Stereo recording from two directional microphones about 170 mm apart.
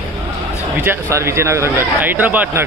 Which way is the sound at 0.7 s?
15° right (ahead or behind).